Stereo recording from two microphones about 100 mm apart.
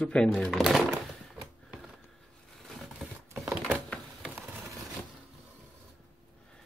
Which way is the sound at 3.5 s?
20° right (ahead or behind).